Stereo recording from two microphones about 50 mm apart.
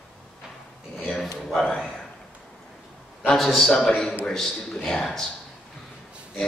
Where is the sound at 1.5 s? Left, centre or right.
Centre.